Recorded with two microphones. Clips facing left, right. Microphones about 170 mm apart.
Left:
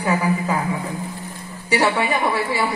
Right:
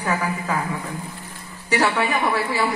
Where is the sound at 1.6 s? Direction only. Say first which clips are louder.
Left 1 dB; 10° left (ahead or behind).